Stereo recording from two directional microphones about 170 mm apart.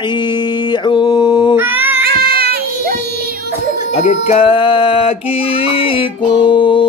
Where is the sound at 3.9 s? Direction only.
40° left (ahead or behind).